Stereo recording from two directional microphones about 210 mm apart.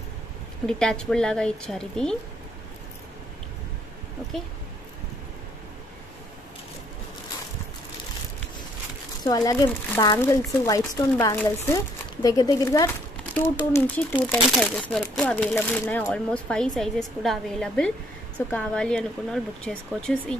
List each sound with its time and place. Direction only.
0.7 s speech: 5° left (ahead or behind)
9.2 s speech: 20° left (ahead or behind)